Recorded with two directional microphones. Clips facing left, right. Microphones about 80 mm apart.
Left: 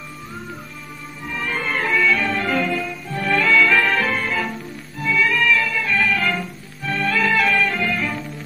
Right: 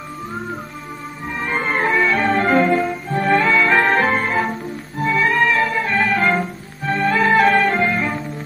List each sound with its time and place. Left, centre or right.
1.3 s music: right